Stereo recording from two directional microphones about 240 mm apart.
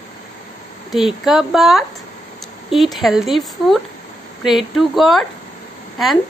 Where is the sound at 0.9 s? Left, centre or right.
Centre.